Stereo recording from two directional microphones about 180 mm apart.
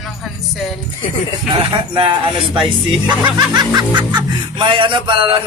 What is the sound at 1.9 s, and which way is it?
Speech, 30° right (ahead or behind).